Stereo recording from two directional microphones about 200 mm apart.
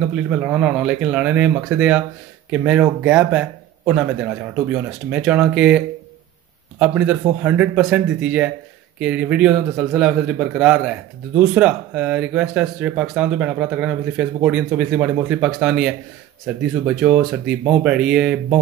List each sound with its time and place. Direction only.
0.1 s a man's voice: 5° right (ahead or behind)